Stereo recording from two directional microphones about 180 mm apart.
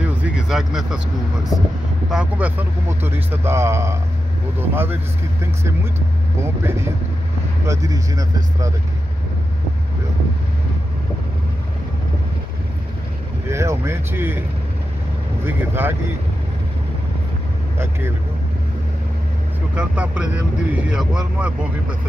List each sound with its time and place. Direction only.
0.0 s a sound: 5° right (ahead or behind)
2.0 s speech: 5° right (ahead or behind)
6.4 s speech: 15° right (ahead or behind)
13.5 s speech: 15° right (ahead or behind)
15.4 s speech: 10° right (ahead or behind)
19.7 s speech: 5° right (ahead or behind)